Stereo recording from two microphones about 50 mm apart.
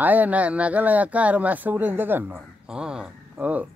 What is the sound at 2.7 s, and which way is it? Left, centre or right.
Speech, centre.